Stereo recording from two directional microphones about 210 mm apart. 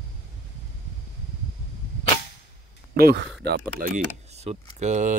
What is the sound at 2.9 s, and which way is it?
Speech, 45° right (ahead or behind).